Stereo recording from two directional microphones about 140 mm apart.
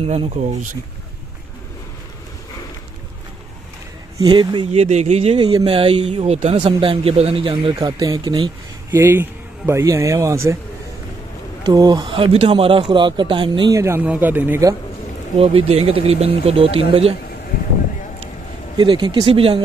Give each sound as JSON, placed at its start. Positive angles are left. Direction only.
{"t": 0.0, "sound": "speech", "side_deg": -45}
{"t": 4.2, "sound": "speech", "side_deg": -35}
{"t": 4.7, "sound": "speech", "side_deg": -55}
{"t": 8.9, "sound": "a man's voice", "side_deg": -15}
{"t": 11.6, "sound": "speech", "side_deg": -30}
{"t": 13.7, "sound": "speech", "side_deg": -20}
{"t": 15.3, "sound": "speech", "side_deg": -40}
{"t": 18.8, "sound": "speech", "side_deg": -35}